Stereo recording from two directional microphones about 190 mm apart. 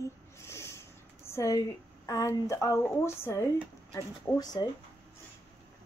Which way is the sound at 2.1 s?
15° left (ahead or behind).